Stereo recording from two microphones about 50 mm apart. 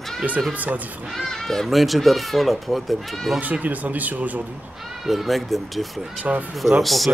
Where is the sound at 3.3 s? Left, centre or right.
Right.